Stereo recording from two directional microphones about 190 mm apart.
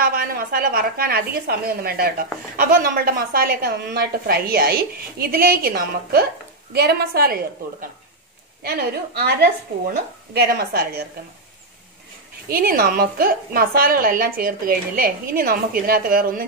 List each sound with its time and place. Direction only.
0.0 s a woman's voice: 50° right (ahead or behind)
8.6 s a woman's voice: 55° right (ahead or behind)
10.3 s a woman's voice: 55° right (ahead or behind)
12.4 s a woman's voice: 50° right (ahead or behind)